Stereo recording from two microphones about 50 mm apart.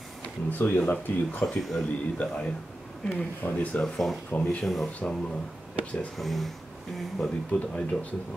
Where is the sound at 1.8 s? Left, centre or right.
Left.